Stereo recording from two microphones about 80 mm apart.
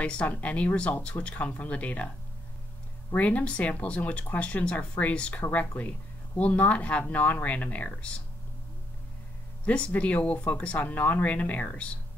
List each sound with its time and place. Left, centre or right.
0.0 s speech: centre
3.2 s speech: centre
9.7 s speech: centre